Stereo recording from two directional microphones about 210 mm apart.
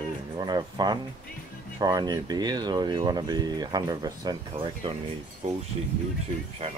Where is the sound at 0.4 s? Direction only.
20° right (ahead or behind).